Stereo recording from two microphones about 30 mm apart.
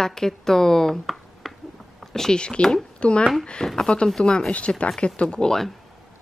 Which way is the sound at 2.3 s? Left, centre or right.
Left.